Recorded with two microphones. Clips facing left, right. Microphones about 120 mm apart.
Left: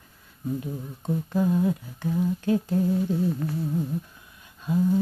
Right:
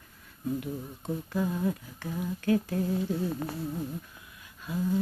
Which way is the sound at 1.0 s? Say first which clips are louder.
Left 6 dB; 15° left (ahead or behind).